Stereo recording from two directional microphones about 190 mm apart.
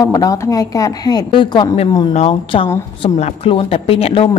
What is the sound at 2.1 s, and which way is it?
Speech, 35° left (ahead or behind).